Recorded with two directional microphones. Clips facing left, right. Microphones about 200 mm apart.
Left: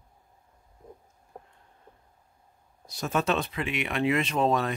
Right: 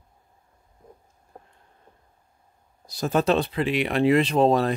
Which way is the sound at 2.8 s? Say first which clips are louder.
Right 5 dB; 35° right (ahead or behind).